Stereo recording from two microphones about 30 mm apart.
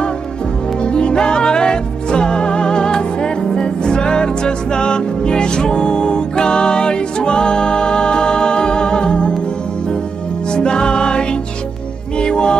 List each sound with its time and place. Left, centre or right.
0.8 s music: left
10.5 s music: left